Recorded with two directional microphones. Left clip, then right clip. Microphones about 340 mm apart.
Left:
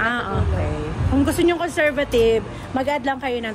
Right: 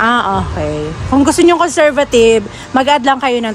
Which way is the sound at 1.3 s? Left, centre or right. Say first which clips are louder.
Right 11 dB; centre.